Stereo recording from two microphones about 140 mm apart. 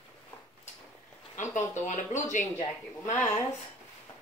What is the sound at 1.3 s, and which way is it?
Speech, 65° left (ahead or behind).